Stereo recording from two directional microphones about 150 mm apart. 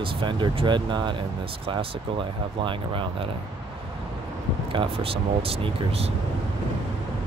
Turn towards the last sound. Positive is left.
turn(degrees=-40)  # may be behind; listen again after turning